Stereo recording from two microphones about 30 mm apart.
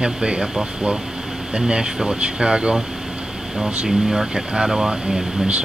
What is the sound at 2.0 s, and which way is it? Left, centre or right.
Speech, right.